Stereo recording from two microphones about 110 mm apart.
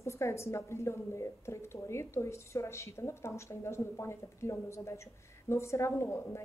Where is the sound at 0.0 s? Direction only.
25° left (ahead or behind).